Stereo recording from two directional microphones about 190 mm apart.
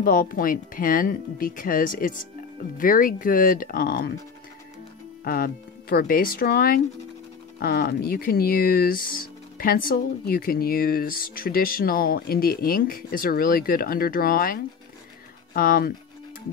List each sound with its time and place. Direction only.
0.0 s speech: 50° left (ahead or behind)
5.2 s speech: 50° left (ahead or behind)